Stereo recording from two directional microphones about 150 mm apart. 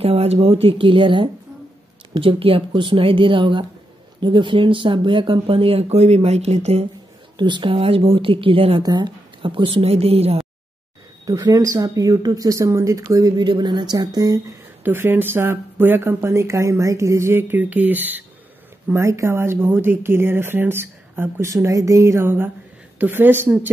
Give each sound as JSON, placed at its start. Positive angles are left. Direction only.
{"t": 0.0, "sound": "speech", "side_deg": -40}
{"t": 7.3, "sound": "speech", "side_deg": -30}
{"t": 11.2, "sound": "speech", "side_deg": -25}
{"t": 14.8, "sound": "speech", "side_deg": -15}